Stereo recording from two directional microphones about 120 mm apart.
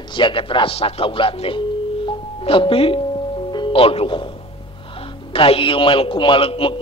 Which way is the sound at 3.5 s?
45° left (ahead or behind).